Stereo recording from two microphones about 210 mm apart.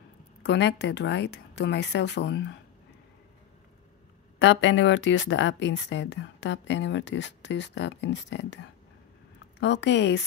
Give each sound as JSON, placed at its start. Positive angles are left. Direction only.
{"t": 0.4, "sound": "speech", "side_deg": 55}
{"t": 4.4, "sound": "speech", "side_deg": 60}
{"t": 9.6, "sound": "speech", "side_deg": 55}